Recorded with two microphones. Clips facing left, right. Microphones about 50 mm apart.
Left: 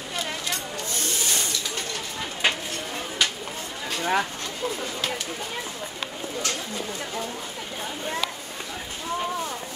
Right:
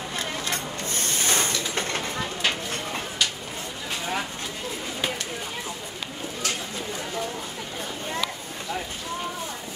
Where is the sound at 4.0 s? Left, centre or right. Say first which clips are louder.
Left 6 dB; left.